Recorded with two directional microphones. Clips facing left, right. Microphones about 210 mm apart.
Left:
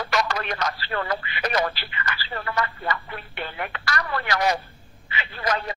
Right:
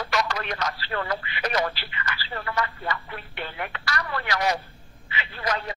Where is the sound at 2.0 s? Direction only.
50° left (ahead or behind).